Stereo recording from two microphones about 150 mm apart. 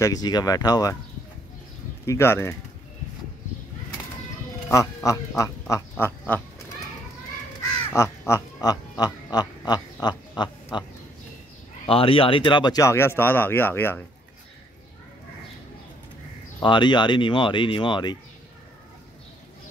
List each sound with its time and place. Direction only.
0.0 s speech: 25° left (ahead or behind)
2.0 s speech: 15° left (ahead or behind)
4.6 s music: 20° left (ahead or behind)
5.4 s quack: 20° left (ahead or behind)
7.9 s quack: 20° left (ahead or behind)
11.8 s speech: 40° left (ahead or behind); by 14.0 s 15° left (ahead or behind)
16.6 s speech: 30° left (ahead or behind)